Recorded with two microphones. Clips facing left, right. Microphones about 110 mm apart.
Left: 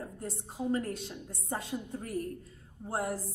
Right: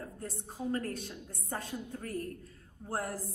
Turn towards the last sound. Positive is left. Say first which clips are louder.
# left 3 dB
turn(degrees=15)  # may be behind; listen again after turning